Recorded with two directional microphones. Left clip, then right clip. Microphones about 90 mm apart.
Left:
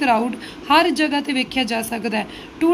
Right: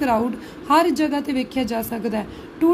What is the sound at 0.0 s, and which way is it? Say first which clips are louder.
A woman's voice: left 2 dB; 30° right (ahead or behind).